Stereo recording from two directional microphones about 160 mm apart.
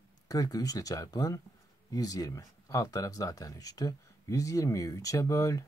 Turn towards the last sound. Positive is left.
turn(degrees=20)  # may be behind; listen again after turning